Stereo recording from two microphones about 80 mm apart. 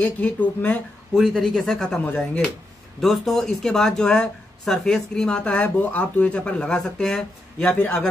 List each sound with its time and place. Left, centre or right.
0.0 s speech: centre
1.1 s speech: centre
2.0 s speech: centre
3.0 s speech: centre